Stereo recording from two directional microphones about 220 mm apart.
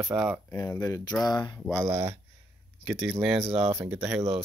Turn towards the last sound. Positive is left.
turn(degrees=-5)  # may be behind; listen again after turning